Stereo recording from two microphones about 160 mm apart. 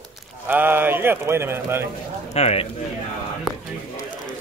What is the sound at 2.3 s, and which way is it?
Speech, 40° left (ahead or behind).